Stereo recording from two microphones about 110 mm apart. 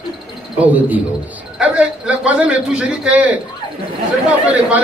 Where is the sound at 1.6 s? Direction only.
10° right (ahead or behind).